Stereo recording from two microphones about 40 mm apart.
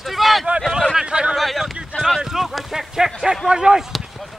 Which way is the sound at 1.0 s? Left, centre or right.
Right.